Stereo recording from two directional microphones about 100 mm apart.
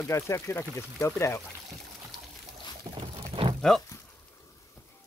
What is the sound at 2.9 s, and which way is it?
Pour, 60° right (ahead or behind).